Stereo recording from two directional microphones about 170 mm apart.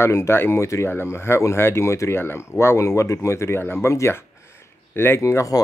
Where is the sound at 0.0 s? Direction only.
15° left (ahead or behind).